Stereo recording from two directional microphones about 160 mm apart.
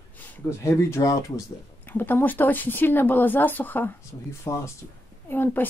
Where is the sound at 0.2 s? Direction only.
15° left (ahead or behind).